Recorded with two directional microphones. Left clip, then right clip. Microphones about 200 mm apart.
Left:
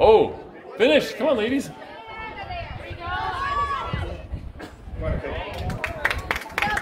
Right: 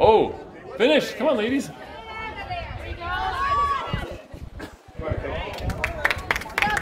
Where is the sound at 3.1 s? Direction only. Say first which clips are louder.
Right 2 dB; 30° right (ahead or behind).